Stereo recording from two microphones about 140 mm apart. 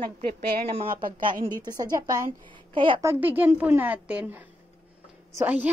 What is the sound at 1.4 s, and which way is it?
Speech, 30° right (ahead or behind).